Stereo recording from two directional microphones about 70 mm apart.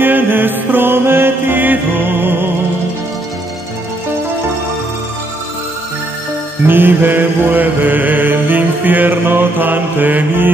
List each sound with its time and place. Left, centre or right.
0.0 s mantra: right
6.7 s mantra: right